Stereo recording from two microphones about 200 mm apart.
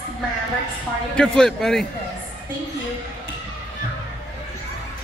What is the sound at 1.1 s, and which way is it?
Speech, 5° left (ahead or behind).